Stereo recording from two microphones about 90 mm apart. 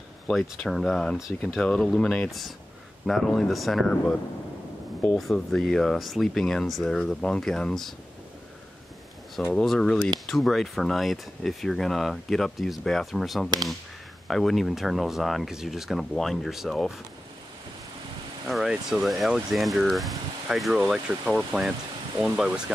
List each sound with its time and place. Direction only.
0.3 s speech: centre (ahead or behind)
3.9 s speech: 10° left (ahead or behind)
5.0 s speech: centre (ahead or behind)
9.5 s speech: 5° left (ahead or behind)
18.5 s speech: 5° right (ahead or behind)